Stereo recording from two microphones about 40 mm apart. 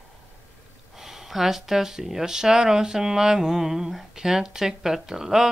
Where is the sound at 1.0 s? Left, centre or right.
Centre.